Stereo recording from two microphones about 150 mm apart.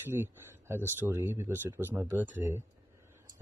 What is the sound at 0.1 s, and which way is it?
Speech, 15° right (ahead or behind).